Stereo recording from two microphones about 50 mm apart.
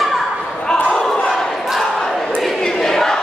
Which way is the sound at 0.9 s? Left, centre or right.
Centre.